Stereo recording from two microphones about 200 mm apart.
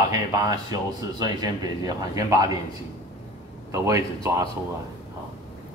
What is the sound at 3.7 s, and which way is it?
Speech, 15° right (ahead or behind).